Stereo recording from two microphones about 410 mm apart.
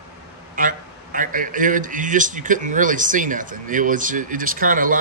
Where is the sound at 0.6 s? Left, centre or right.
Centre.